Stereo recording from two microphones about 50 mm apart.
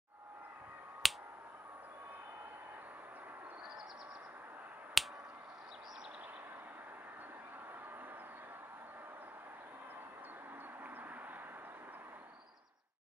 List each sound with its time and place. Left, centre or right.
1.0 s finger snapping: centre
5.0 s finger snapping: centre
10.8 s a sound: right